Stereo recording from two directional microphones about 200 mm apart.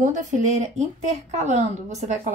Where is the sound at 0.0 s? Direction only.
40° right (ahead or behind).